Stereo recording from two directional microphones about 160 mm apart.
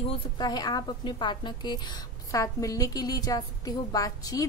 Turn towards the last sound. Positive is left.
turn(degrees=20)  # may be behind; listen again after turning